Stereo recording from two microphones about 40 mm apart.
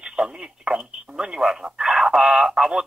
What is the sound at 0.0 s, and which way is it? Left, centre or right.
Telephone, right.